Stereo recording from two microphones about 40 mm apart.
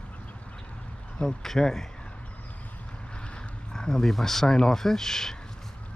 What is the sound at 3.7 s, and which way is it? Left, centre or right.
Speech, centre.